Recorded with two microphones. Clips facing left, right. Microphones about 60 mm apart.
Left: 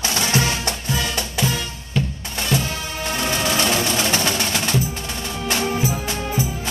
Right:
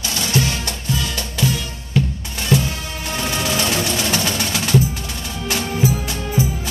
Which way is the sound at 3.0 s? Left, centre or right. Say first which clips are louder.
Even; centre.